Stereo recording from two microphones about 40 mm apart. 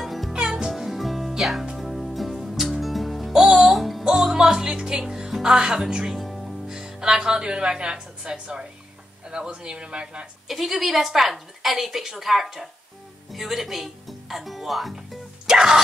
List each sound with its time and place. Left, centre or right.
0.0 s music: centre
1.3 s speech: centre
1.8 s music: centre
2.5 s music: centre
2.8 s music: centre
4.3 s music: centre
6.1 s music: centre
6.7 s speech: centre
10.5 s a woman's voice: centre
15.4 s speech: centre